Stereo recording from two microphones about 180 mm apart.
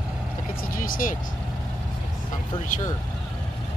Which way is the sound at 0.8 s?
50° left (ahead or behind).